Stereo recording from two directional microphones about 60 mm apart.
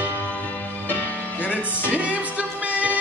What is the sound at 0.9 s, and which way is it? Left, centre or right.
Music, left.